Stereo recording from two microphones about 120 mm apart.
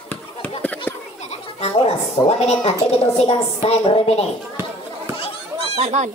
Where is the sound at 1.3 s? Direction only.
55° left (ahead or behind).